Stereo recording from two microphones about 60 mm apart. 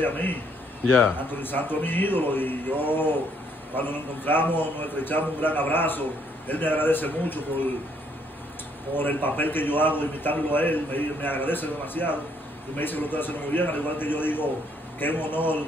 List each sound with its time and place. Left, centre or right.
0.0 s a man's voice: left
8.9 s a man's voice: left